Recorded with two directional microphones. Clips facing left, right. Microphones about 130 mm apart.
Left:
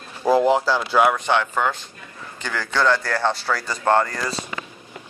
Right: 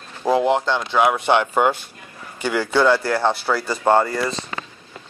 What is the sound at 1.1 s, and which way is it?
Speech, 15° right (ahead or behind).